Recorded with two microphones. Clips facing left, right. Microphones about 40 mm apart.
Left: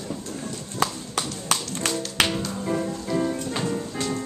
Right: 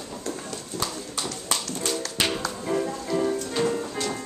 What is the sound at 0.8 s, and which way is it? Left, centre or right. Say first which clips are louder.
Horse: left 6 dB; left.